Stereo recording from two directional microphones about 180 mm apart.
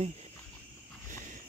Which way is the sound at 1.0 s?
45° right (ahead or behind).